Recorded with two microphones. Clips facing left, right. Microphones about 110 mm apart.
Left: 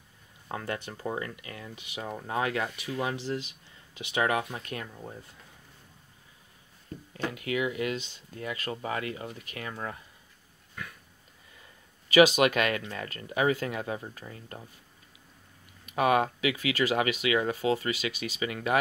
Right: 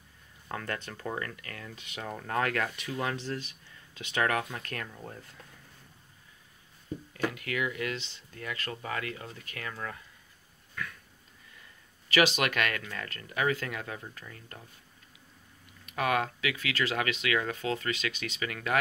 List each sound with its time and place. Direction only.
0.5 s speech: 20° left (ahead or behind)
7.2 s speech: 20° left (ahead or behind)
12.1 s speech: 15° left (ahead or behind)
15.9 s speech: 20° left (ahead or behind)